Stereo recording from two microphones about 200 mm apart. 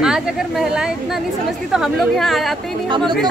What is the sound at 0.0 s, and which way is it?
A woman's voice, 5° right (ahead or behind).